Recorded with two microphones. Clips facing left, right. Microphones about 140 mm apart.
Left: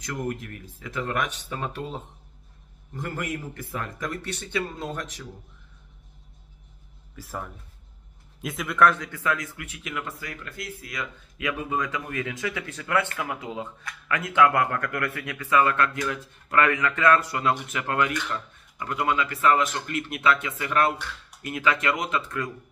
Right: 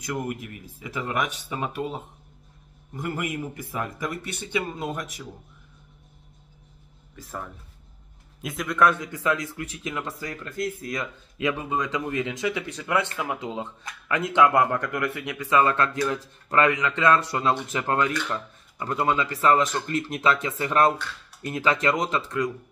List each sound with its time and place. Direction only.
0.0 s a man's voice: 10° right (ahead or behind)
3.0 s a man's voice: 10° right (ahead or behind)
7.2 s a man's voice: 5° left (ahead or behind)
9.1 s speech: 20° right (ahead or behind)